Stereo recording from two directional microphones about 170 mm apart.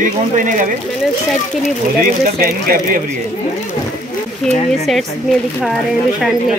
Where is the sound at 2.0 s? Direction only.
55° right (ahead or behind).